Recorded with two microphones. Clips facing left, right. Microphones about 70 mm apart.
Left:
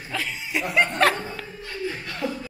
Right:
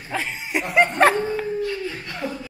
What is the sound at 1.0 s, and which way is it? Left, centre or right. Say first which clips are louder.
Dog: right 4 dB; right.